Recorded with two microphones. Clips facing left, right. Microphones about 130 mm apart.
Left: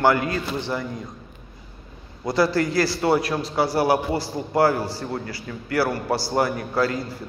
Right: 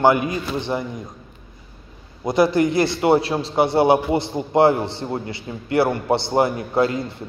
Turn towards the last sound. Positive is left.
turn(degrees=-25)  # may be behind; listen again after turning